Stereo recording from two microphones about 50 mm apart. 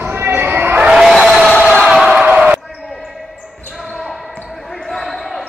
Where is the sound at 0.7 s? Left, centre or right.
Centre.